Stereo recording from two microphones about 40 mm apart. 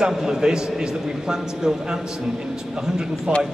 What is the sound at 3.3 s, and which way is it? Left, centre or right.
Speech, right.